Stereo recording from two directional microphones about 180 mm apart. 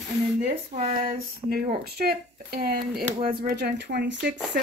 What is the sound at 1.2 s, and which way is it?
Speech, 55° right (ahead or behind).